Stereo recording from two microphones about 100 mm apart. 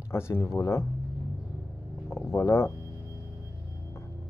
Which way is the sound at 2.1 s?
30° left (ahead or behind).